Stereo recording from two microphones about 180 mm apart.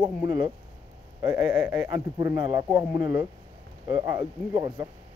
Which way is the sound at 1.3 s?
10° right (ahead or behind).